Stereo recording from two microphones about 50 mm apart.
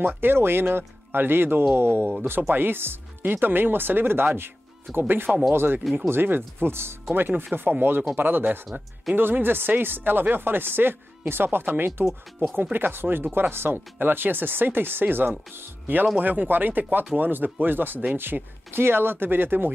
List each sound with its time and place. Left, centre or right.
0.0 s speech: right
7.2 s speech: right
16.2 s speech: right